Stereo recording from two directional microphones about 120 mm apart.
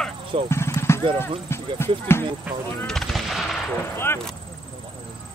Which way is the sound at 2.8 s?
5° left (ahead or behind).